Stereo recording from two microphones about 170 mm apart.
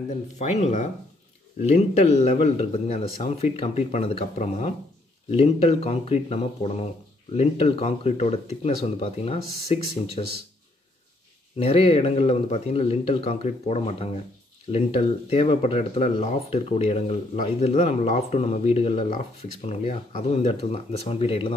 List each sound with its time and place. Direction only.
0.1 s speech: 40° left (ahead or behind)
11.5 s speech: 35° left (ahead or behind)